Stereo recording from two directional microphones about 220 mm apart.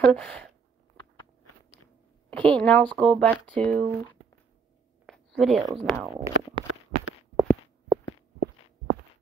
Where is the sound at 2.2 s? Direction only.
5° left (ahead or behind).